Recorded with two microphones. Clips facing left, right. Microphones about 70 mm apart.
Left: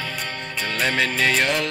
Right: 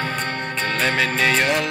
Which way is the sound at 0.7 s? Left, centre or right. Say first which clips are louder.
Right 1 dB; centre.